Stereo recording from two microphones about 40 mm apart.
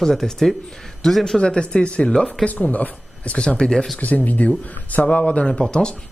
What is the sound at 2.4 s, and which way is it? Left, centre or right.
Speech, left.